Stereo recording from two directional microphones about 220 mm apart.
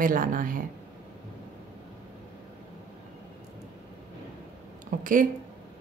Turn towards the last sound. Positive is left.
turn(degrees=-35)  # may be behind; listen again after turning